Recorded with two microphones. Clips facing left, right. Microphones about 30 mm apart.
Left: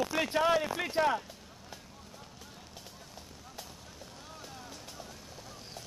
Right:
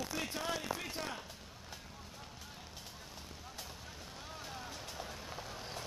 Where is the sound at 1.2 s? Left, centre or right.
Centre; by 5.8 s right.